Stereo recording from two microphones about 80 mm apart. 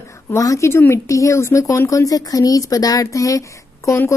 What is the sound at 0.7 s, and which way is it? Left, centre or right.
A woman's voice, left.